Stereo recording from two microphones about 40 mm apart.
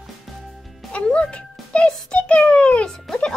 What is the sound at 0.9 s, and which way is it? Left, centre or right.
Music, left.